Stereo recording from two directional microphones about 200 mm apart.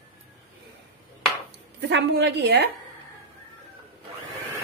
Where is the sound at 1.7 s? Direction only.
60° right (ahead or behind).